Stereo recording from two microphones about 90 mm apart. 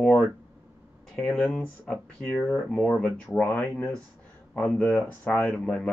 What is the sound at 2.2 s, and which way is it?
Speech, 25° left (ahead or behind).